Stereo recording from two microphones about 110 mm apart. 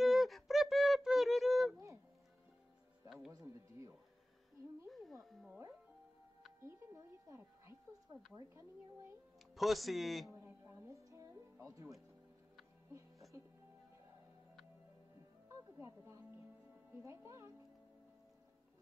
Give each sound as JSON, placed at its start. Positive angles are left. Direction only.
{"t": 0.0, "sound": "a sound", "side_deg": 0}
{"t": 3.3, "sound": "music", "side_deg": -30}
{"t": 4.8, "sound": "a sound", "side_deg": 0}
{"t": 6.6, "sound": "wind chime", "side_deg": -25}
{"t": 9.6, "sound": "speech", "side_deg": 0}
{"t": 10.3, "sound": "music", "side_deg": -20}
{"t": 15.4, "sound": "music", "side_deg": -25}
{"t": 16.9, "sound": "speech", "side_deg": -25}